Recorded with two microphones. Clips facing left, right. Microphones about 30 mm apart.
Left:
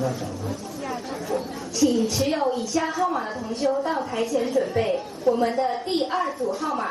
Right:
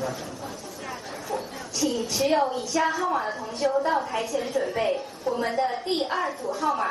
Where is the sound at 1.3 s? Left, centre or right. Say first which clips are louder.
Left 3 dB; centre.